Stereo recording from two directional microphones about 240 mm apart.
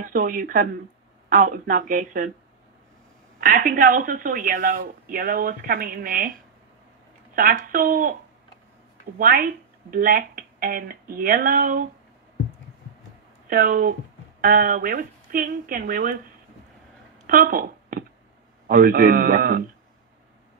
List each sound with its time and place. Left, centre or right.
0.0 s speech: right
3.3 s speech: right
7.3 s speech: right
9.2 s speech: right
13.5 s speech: right
17.3 s a sound: right
18.7 s speech: right